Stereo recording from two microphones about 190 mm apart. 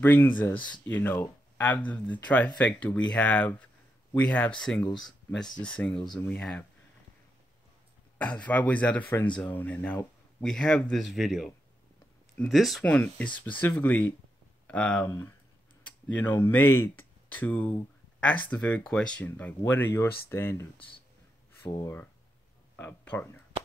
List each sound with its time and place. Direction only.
0.0 s speech: 10° left (ahead or behind)
8.2 s speech: 5° left (ahead or behind)
21.6 s speech: 20° left (ahead or behind)
22.8 s speech: 10° left (ahead or behind)